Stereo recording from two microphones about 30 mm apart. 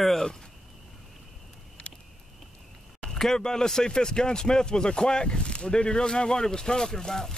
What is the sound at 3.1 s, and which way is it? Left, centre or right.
Speech, centre.